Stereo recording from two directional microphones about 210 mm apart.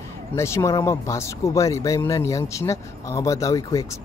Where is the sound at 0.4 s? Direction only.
15° left (ahead or behind).